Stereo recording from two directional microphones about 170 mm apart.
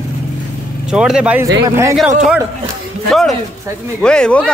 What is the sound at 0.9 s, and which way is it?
Speech, 5° right (ahead or behind).